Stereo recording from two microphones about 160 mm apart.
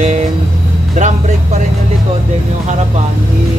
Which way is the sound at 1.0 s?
50° right (ahead or behind).